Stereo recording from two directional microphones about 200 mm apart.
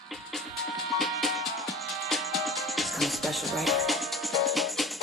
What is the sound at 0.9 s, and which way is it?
Music, centre (ahead or behind).